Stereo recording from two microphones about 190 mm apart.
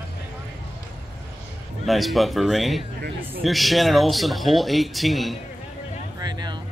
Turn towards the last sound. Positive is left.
turn(degrees=-20)  # may be behind; listen again after turning